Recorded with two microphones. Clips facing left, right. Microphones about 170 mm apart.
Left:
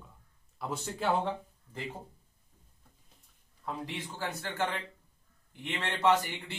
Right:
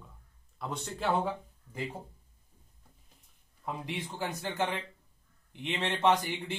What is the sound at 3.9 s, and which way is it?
A man's voice, 15° right (ahead or behind).